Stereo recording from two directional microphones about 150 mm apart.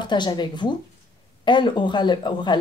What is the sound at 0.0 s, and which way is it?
Speech, 30° left (ahead or behind).